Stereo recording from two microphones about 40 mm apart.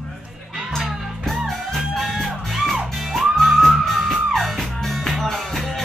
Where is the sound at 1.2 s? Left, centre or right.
Centre.